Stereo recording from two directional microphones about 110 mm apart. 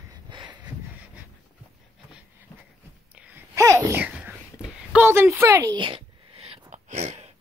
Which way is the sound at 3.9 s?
15° right (ahead or behind).